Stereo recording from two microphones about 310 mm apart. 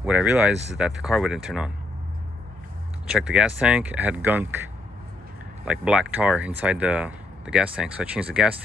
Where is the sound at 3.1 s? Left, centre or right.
Centre.